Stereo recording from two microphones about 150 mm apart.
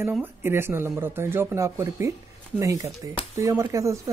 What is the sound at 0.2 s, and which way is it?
Speech, 15° right (ahead or behind).